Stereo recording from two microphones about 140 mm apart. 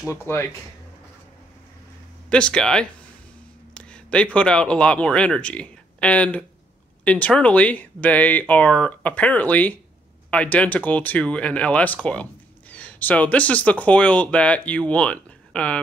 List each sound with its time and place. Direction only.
0.1 s speech: 20° left (ahead or behind)
2.2 s speech: 5° left (ahead or behind)